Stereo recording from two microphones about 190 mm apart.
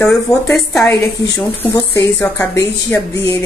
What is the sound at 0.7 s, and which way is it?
A woman's voice, 15° left (ahead or behind).